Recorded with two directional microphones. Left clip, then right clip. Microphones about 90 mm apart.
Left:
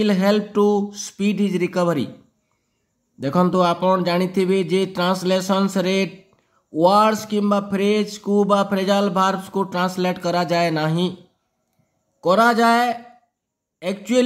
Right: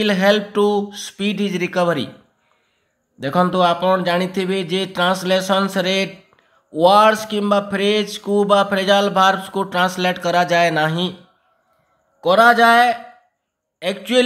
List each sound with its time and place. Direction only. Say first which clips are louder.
0.0 s speech: right 3 dB; 25° left (ahead or behind)
3.2 s speech: right 2 dB; 35° left (ahead or behind)
12.2 s speech: right 4 dB; 35° left (ahead or behind)